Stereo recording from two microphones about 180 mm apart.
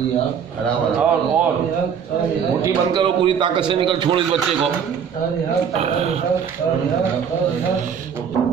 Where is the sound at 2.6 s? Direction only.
25° right (ahead or behind).